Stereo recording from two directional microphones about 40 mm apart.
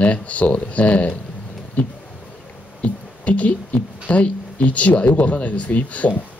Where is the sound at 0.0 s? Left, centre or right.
Left.